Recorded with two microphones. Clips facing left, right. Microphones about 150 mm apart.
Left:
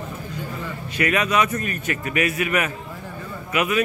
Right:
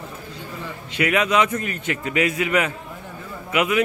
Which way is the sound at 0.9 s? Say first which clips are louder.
Right 2 dB; 15° right (ahead or behind).